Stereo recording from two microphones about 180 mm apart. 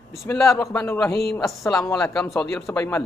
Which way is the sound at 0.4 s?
5° left (ahead or behind).